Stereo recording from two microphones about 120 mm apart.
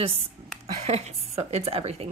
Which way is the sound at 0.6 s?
60° right (ahead or behind).